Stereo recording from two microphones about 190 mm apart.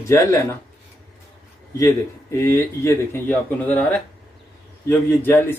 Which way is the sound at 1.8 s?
15° left (ahead or behind).